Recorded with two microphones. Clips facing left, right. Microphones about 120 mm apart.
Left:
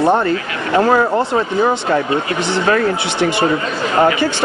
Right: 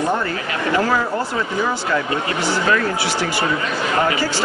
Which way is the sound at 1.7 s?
25° left (ahead or behind).